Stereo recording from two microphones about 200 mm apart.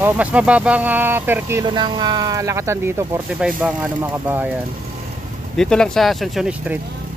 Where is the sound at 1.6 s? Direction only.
25° right (ahead or behind).